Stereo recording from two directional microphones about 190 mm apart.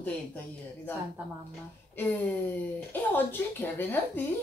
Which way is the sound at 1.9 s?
10° left (ahead or behind).